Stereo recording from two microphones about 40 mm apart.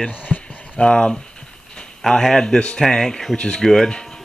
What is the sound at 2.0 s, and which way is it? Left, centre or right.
Speech, centre.